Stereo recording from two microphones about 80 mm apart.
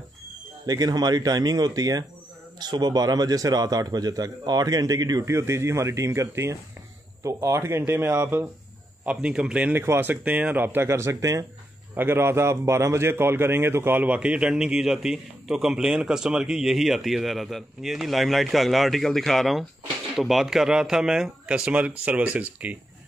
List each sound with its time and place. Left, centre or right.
0.7 s a man's voice: right
5.3 s a man's voice: right
9.0 s speech: centre; by 11.4 s right
11.9 s a man's voice: right
14.0 s a man's voice: centre